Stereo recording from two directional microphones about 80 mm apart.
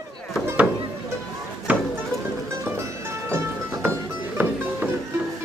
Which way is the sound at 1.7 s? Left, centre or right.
Right.